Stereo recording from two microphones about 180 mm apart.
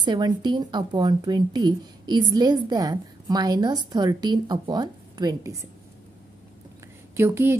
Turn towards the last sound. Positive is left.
turn(degrees=-15)  # may be behind; listen again after turning